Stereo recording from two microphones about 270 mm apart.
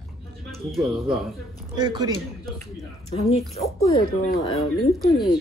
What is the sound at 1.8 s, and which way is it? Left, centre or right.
Speech, centre.